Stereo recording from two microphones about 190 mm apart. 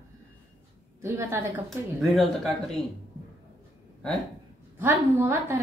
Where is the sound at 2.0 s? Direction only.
Centre (ahead or behind).